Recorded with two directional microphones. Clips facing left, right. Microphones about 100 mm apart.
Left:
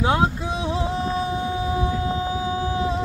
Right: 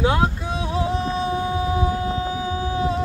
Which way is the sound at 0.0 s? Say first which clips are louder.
Even; 25° left (ahead or behind).